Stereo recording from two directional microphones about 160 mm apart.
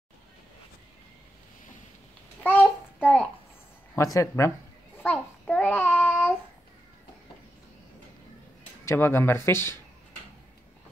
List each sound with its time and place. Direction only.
2.4 s child singing: 10° left (ahead or behind)
3.9 s speech: 20° left (ahead or behind)
4.9 s child singing: 10° left (ahead or behind)
8.8 s speech: 15° left (ahead or behind)